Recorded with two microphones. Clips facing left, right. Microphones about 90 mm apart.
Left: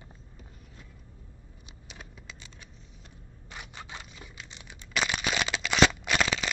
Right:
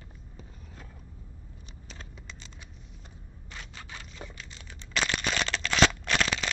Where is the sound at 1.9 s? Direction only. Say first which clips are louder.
Even; 10° left (ahead or behind).